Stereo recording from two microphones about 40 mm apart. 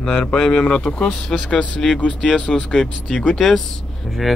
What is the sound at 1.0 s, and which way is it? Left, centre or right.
Speech, centre.